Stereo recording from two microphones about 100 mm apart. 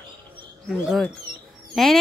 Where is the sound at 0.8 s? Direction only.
Centre (ahead or behind).